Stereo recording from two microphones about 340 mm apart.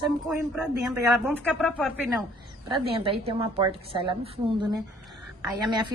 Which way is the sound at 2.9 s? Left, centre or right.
Centre.